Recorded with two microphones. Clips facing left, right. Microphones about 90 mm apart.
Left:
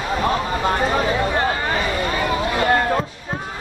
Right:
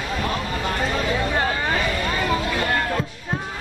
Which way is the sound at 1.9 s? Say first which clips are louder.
Left 2 dB; 25° left (ahead or behind).